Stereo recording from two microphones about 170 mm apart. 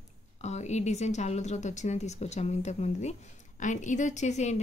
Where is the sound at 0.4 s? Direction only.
40° left (ahead or behind).